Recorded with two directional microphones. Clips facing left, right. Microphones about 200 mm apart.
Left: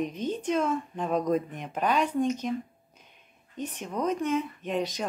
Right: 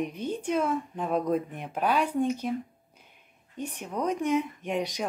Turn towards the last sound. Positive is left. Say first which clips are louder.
# even
turn(degrees=-15)  # may be behind; listen again after turning